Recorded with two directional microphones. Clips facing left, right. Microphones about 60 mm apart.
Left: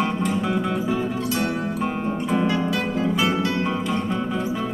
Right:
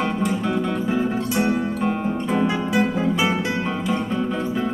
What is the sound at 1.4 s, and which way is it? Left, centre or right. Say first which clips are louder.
Music: right 3 dB; centre.